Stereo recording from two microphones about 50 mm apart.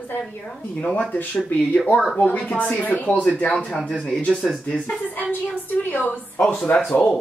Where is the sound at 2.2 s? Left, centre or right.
Left.